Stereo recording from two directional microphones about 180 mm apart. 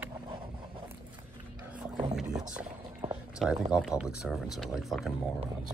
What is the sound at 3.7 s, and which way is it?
Speech, 5° right (ahead or behind).